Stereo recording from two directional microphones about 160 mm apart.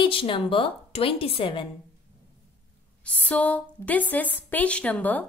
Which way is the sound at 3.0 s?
5° left (ahead or behind).